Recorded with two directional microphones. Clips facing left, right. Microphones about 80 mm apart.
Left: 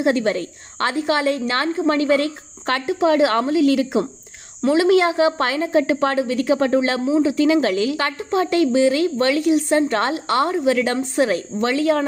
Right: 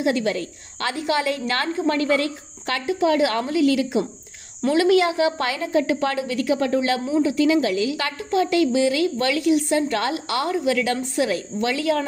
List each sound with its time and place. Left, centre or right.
0.0 s a woman's voice: left
7.4 s a woman's voice: left
8.2 s a woman's voice: left